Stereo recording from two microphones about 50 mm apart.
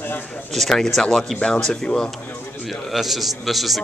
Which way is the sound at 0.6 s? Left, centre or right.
Centre.